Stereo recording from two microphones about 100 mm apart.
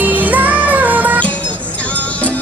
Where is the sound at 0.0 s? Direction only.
15° right (ahead or behind).